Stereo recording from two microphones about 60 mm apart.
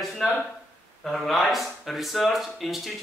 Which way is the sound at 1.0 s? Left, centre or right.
Centre.